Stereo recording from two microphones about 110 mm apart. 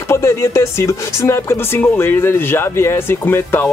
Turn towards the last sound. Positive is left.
turn(degrees=20)  # may be behind; listen again after turning